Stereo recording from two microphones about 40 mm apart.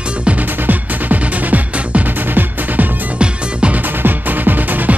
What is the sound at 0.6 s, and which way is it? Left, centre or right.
Music, right.